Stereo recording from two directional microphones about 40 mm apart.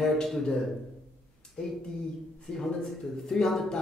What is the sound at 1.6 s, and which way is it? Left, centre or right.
Speech, centre.